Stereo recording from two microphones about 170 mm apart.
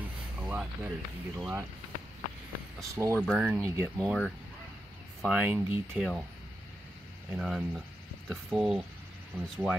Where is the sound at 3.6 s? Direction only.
15° right (ahead or behind).